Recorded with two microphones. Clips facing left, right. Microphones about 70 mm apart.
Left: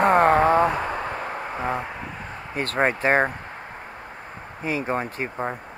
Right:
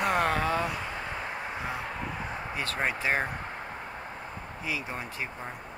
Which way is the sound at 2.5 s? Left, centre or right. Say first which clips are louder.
Left 9 dB; left.